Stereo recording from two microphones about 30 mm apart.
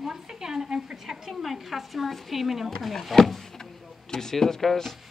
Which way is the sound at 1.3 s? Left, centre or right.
Centre.